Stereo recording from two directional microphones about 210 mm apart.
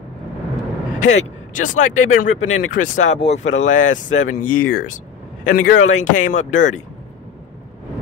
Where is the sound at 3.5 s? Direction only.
65° left (ahead or behind).